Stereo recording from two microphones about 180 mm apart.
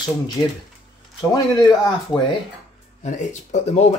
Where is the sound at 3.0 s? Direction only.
40° left (ahead or behind).